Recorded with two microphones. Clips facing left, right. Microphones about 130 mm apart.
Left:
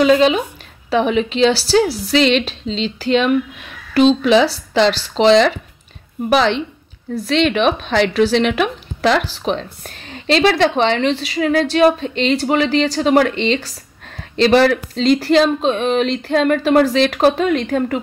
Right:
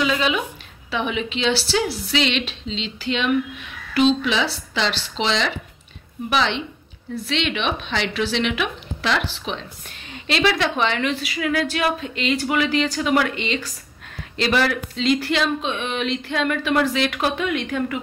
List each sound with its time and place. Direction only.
0.0 s a woman's voice: 40° left (ahead or behind)